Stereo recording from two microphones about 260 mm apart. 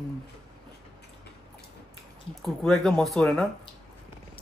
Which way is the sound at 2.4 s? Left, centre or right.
Centre.